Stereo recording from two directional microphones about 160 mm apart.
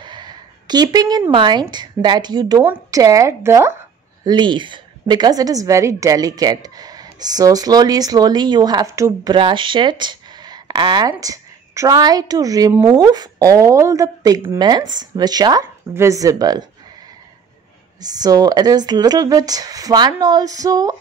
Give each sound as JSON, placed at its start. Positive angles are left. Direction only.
{"t": 0.0, "sound": "a sound", "side_deg": -25}
{"t": 1.3, "sound": "a woman's voice", "side_deg": -30}
{"t": 4.2, "sound": "a woman's voice", "side_deg": -25}
{"t": 18.0, "sound": "a woman's voice", "side_deg": -25}